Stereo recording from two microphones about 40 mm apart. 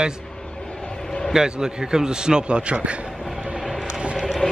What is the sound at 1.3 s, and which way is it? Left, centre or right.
A man's voice, centre.